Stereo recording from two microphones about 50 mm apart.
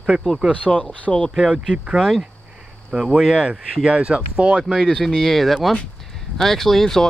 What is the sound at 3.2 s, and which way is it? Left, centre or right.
Speech, centre.